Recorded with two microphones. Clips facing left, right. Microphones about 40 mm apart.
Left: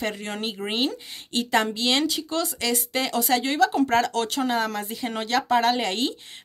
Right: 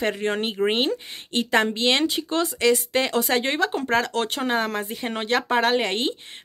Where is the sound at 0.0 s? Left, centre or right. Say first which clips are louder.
Right 5 dB; right.